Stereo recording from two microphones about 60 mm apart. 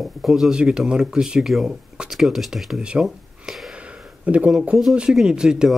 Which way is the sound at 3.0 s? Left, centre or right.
Centre.